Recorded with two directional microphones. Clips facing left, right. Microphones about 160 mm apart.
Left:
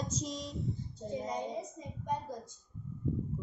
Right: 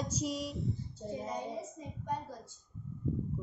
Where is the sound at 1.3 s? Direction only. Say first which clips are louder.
Left 2 dB; 20° left (ahead or behind).